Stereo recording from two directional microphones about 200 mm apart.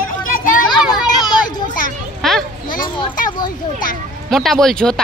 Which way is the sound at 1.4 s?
40° left (ahead or behind).